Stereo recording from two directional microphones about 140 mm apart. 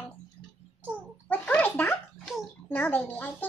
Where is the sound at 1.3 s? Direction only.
10° left (ahead or behind).